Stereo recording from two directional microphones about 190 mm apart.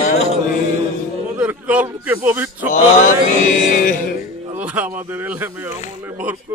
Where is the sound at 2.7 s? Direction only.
40° left (ahead or behind).